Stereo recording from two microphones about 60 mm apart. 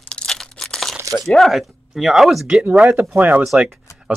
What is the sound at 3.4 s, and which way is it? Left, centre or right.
Speech, centre.